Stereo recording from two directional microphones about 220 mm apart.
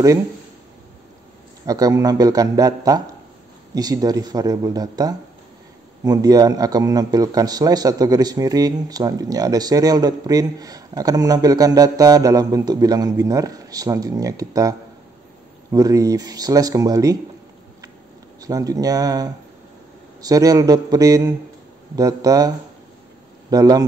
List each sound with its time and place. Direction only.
1.7 s speech: 15° right (ahead or behind)
18.4 s speech: 15° right (ahead or behind)
23.5 s speech: 15° right (ahead or behind)